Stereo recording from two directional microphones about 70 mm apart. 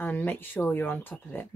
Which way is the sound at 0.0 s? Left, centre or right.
Left.